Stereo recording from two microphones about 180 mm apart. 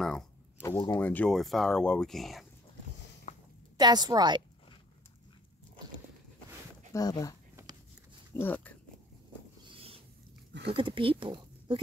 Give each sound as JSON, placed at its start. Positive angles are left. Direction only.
{"t": 0.6, "sound": "speech", "side_deg": 15}
{"t": 3.3, "sound": "a sound", "side_deg": 35}
{"t": 3.7, "sound": "a woman's voice", "side_deg": -20}
{"t": 6.9, "sound": "speech", "side_deg": 20}
{"t": 8.4, "sound": "speech", "side_deg": 10}
{"t": 9.7, "sound": "rub", "side_deg": -30}
{"t": 10.5, "sound": "a sound", "side_deg": -70}
{"t": 10.8, "sound": "speech", "side_deg": -30}